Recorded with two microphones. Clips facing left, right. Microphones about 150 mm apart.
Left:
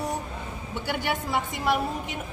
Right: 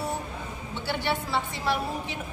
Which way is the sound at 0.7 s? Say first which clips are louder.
Even; 15° left (ahead or behind).